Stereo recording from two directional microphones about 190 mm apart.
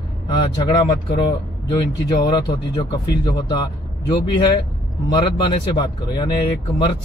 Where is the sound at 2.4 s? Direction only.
25° left (ahead or behind).